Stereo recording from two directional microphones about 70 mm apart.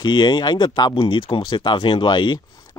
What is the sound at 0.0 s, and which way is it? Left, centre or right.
Speech, left.